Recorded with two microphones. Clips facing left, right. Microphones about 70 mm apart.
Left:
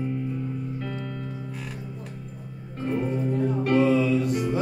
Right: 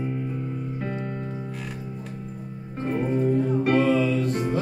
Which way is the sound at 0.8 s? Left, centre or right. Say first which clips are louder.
Right 3 dB; right.